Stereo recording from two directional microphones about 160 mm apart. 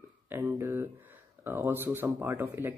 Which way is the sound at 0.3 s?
15° right (ahead or behind).